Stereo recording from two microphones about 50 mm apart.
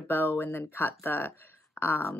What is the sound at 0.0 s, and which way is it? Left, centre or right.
Speech, left.